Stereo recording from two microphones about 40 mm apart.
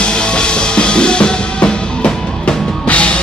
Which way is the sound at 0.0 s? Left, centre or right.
Left.